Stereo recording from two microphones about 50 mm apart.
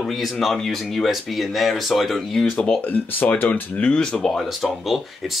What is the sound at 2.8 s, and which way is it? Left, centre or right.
Speech, left.